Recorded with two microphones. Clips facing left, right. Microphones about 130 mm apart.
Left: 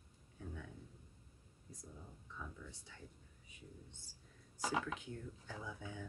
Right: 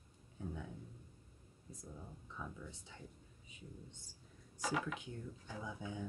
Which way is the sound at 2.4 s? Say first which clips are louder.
Right 3 dB; 20° right (ahead or behind).